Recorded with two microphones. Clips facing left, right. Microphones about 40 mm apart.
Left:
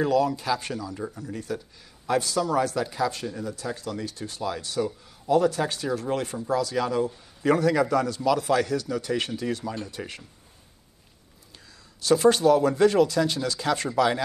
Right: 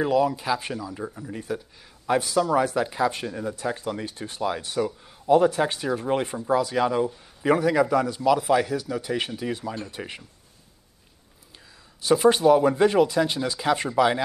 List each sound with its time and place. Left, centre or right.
0.0 s speech: centre
12.0 s speech: centre